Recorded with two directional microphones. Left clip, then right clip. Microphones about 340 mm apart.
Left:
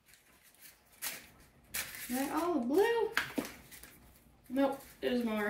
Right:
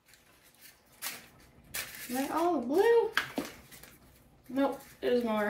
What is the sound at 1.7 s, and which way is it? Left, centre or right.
Speech, centre.